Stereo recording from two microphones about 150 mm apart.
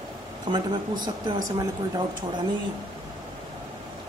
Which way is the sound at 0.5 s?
30° right (ahead or behind).